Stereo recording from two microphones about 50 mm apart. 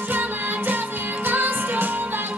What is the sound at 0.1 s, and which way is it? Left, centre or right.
Music, right.